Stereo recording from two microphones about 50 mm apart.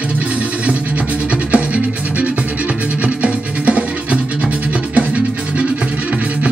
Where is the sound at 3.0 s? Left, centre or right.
Right.